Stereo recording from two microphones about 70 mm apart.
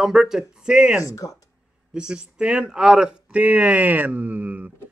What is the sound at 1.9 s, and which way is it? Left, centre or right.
A man's voice, centre.